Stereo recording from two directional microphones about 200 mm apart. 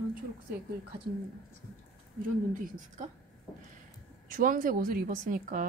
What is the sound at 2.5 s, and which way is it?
Speech, 40° right (ahead or behind).